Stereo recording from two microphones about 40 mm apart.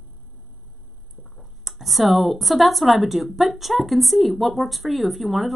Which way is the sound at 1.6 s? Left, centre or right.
Centre.